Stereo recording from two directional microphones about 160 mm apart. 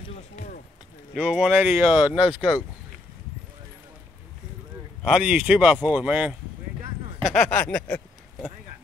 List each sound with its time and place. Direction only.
0.4 s a sound: 40° left (ahead or behind)
1.1 s speech: 5° right (ahead or behind)
5.0 s speech: 5° right (ahead or behind)